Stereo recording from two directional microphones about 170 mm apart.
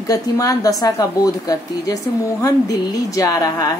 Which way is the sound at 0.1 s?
20° left (ahead or behind).